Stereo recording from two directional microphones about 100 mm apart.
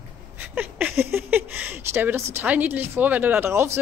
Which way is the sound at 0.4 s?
15° right (ahead or behind).